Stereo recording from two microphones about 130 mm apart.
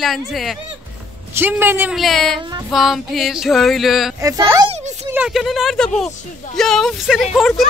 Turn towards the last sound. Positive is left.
turn(degrees=0)  # may be behind; listen again after turning